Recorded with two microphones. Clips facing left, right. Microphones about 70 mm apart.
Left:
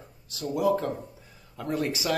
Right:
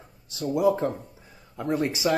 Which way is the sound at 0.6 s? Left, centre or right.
Centre.